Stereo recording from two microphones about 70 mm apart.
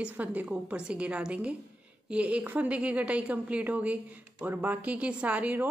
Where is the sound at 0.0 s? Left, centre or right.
Right.